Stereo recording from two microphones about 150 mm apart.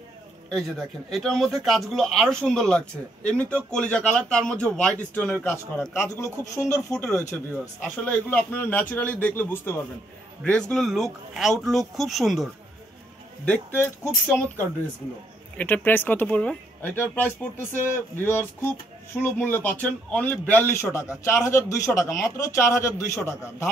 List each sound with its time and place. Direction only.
0.5 s speech: centre (ahead or behind); by 6.8 s 20° left (ahead or behind)
6.9 s speech: 10° left (ahead or behind)
13.5 s speech: 15° left (ahead or behind)
15.5 s a man's voice: 10° left (ahead or behind)